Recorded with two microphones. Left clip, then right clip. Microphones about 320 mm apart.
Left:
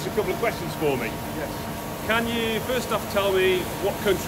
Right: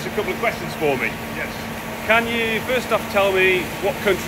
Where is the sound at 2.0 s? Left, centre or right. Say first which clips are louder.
Right 6 dB; centre.